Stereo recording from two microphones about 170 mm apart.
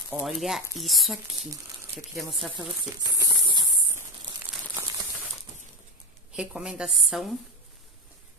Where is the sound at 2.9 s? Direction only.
20° right (ahead or behind).